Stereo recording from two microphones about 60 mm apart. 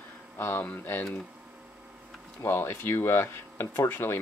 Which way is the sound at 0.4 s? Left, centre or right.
Left.